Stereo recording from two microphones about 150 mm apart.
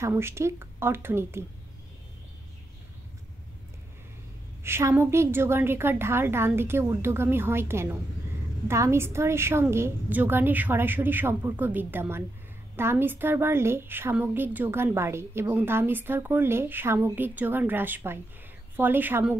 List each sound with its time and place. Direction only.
0.0 s a woman's voice: 15° right (ahead or behind)
4.6 s a woman's voice: 15° right (ahead or behind)